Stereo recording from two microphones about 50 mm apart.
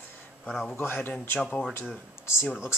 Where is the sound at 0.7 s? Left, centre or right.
Left.